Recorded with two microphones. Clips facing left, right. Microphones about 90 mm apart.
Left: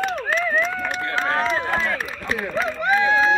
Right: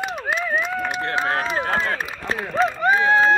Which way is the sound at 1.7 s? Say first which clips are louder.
Right 1 dB; 35° right (ahead or behind).